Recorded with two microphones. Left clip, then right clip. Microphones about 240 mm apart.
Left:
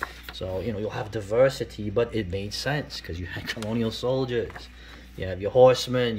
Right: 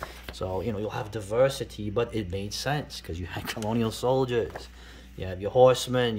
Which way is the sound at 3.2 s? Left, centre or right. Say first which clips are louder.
Left 1 dB; centre.